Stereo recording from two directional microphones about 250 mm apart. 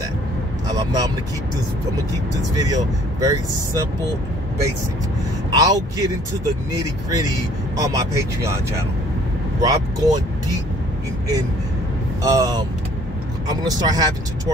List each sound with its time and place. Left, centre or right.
0.7 s vehicle: centre
2.5 s speech: centre
5.5 s speech: centre
9.6 s speech: centre
12.2 s speech: centre